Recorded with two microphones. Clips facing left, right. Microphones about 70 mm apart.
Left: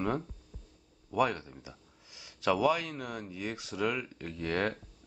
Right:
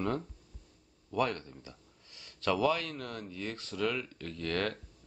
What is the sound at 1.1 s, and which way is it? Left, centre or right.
Speech, centre.